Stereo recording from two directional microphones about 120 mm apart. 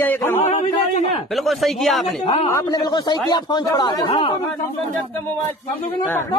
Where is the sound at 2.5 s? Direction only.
35° left (ahead or behind).